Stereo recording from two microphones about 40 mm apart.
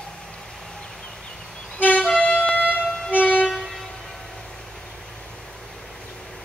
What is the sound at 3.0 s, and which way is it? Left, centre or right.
Train, left.